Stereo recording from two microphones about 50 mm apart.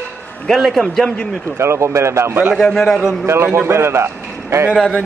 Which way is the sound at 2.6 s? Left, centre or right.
Centre.